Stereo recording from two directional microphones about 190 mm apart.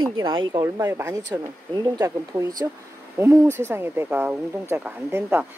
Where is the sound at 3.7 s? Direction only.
10° right (ahead or behind).